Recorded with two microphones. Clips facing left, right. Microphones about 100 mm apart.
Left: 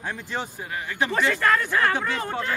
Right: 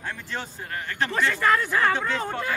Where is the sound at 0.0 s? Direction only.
15° left (ahead or behind).